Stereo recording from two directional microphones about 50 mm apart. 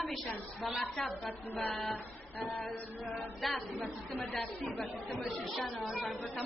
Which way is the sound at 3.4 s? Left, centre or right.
Centre.